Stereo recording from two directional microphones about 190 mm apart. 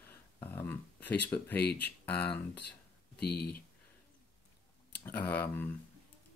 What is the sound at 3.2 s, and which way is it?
Speech, 55° left (ahead or behind).